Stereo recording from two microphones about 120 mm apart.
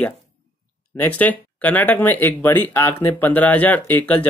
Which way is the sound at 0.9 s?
15° left (ahead or behind).